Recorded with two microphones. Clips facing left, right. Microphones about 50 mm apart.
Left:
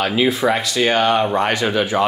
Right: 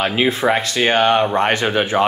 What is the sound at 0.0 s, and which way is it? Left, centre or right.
Speech, right.